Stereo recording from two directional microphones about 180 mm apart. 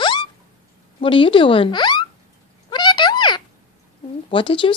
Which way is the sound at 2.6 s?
25° left (ahead or behind).